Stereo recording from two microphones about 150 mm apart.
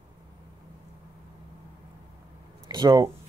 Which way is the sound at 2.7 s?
30° right (ahead or behind).